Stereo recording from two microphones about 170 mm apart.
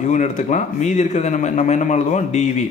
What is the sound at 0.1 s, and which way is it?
Speech, 45° left (ahead or behind).